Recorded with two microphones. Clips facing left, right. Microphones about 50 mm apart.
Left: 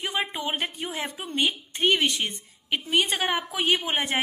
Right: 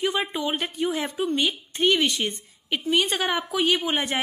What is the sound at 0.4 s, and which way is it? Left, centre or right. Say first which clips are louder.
A woman's voice: right 3 dB; centre.